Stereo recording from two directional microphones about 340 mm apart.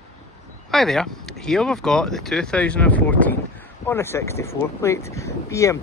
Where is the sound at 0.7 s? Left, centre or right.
Centre.